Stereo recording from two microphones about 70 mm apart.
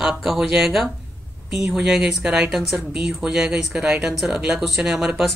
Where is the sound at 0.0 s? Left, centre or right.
Centre.